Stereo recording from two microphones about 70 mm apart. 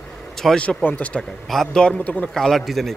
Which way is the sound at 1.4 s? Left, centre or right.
Centre.